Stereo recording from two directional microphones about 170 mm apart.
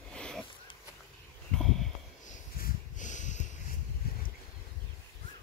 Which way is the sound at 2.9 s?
45° left (ahead or behind).